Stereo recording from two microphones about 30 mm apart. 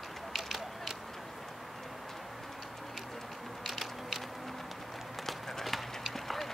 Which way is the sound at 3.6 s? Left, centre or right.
Centre.